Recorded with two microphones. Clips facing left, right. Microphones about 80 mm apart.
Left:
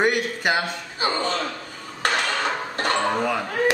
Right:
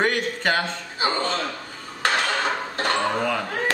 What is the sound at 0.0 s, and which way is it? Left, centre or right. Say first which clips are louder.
Speech: left 1 dB; centre.